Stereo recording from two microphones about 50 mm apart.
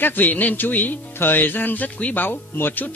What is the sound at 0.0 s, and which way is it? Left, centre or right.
A man's voice, left.